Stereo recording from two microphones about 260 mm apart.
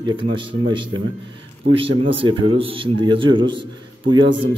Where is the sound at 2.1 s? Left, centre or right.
Centre.